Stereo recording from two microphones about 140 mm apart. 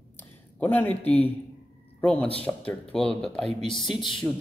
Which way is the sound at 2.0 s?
10° left (ahead or behind).